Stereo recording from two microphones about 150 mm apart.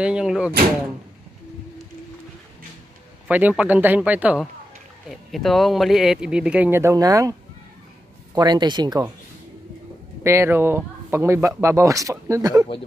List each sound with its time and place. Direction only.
0.0 s speech: 5° right (ahead or behind)
3.3 s speech: 10° right (ahead or behind)
8.4 s speech: 30° right (ahead or behind)
10.2 s speech: 15° right (ahead or behind)